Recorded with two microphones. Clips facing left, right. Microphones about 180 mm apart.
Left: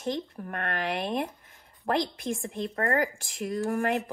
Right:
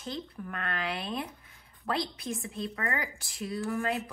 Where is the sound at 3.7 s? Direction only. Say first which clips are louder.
Left 4 dB; 60° left (ahead or behind).